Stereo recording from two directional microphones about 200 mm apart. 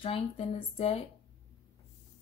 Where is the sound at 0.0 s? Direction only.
30° left (ahead or behind).